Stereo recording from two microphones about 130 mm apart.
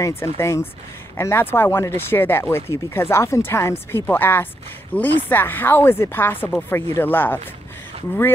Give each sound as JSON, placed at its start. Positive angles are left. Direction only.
{"t": 0.0, "sound": "a woman's voice", "side_deg": 20}